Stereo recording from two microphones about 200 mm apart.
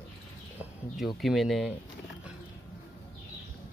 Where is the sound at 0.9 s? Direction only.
Centre (ahead or behind).